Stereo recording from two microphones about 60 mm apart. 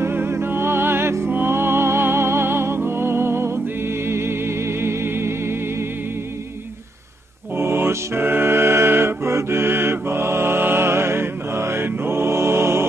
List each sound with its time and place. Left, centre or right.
0.0 s music: right
7.5 s music: right